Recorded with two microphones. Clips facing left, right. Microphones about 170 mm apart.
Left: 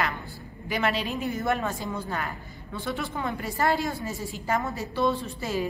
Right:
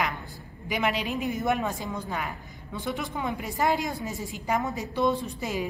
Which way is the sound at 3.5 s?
20° right (ahead or behind).